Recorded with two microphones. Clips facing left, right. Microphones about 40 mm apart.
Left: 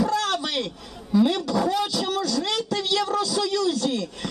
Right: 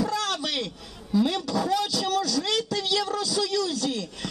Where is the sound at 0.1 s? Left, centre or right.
Left.